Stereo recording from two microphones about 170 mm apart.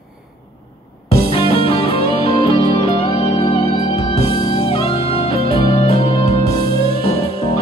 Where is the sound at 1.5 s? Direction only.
35° left (ahead or behind).